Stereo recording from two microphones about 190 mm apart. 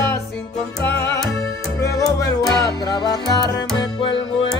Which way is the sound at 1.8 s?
20° left (ahead or behind).